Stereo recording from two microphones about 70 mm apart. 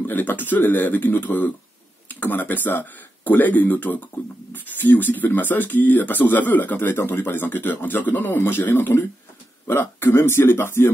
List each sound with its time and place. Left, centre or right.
0.0 s speech: left